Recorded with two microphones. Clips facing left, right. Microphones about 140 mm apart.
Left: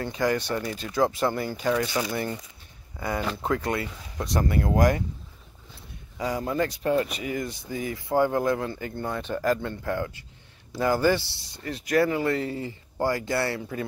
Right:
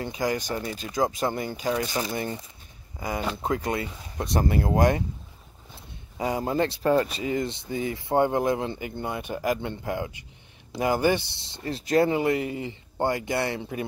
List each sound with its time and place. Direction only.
0.0 s speech: 15° right (ahead or behind)
6.1 s speech: 25° right (ahead or behind)